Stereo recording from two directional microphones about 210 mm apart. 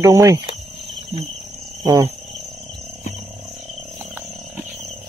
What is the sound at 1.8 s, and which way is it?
Speech, 15° right (ahead or behind).